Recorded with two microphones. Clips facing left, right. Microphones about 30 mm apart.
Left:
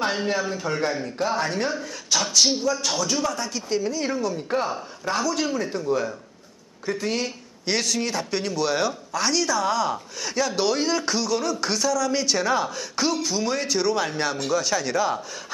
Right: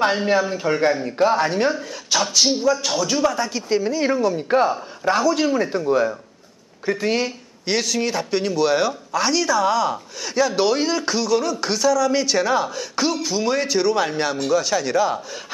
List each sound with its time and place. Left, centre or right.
0.0 s a man's voice: centre